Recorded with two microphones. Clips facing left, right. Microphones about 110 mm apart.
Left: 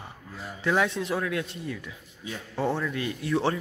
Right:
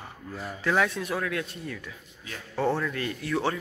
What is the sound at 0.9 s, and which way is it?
Speech, 25° left (ahead or behind).